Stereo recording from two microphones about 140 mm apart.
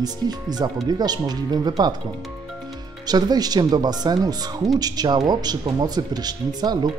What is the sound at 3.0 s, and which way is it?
Speech, 30° right (ahead or behind).